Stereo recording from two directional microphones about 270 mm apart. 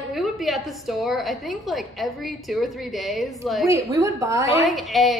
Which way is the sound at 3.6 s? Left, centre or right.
Centre.